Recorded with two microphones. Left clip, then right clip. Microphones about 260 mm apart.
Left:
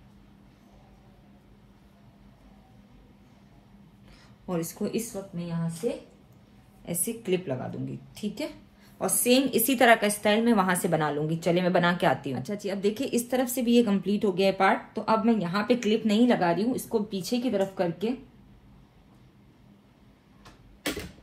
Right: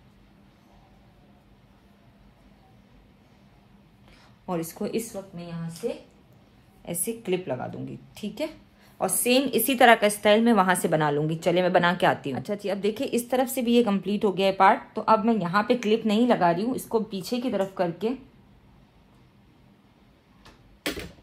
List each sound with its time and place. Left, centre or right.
4.5 s a woman's voice: right
7.1 s a woman's voice: right